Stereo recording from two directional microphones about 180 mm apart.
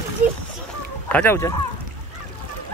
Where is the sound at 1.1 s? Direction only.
10° left (ahead or behind).